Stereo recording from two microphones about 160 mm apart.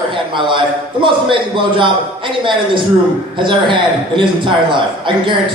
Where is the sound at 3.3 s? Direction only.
30° right (ahead or behind).